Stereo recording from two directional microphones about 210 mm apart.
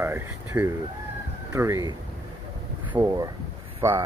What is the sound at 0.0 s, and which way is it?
Speech, 10° right (ahead or behind).